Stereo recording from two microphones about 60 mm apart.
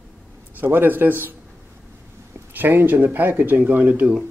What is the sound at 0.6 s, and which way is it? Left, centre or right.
Speech, right.